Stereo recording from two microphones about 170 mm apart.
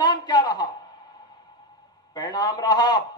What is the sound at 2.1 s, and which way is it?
Speech, 25° left (ahead or behind).